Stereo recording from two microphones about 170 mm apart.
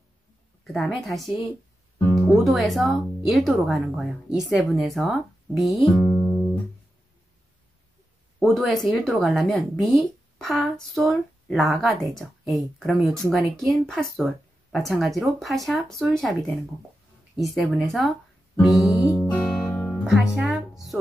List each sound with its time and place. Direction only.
0.7 s speech: centre (ahead or behind)
2.0 s music: 10° left (ahead or behind)
2.2 s speech: centre (ahead or behind)
8.4 s speech: centre (ahead or behind)
18.9 s music: 20° left (ahead or behind)
19.3 s music: 5° left (ahead or behind)